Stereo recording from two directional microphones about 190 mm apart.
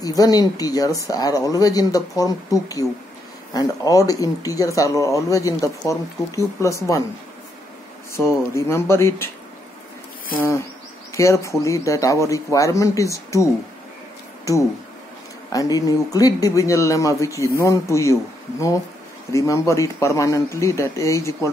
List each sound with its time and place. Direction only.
0.0 s speech: 20° left (ahead or behind)
8.1 s speech: 15° left (ahead or behind)
11.1 s speech: 15° left (ahead or behind)
19.3 s speech: 15° left (ahead or behind)